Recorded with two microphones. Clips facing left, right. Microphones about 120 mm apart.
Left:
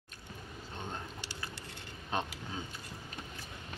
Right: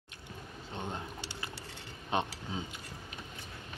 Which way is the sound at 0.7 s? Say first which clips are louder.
Right 3 dB; 20° right (ahead or behind).